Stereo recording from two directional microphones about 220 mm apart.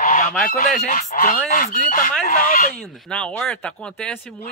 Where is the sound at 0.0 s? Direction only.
35° left (ahead or behind).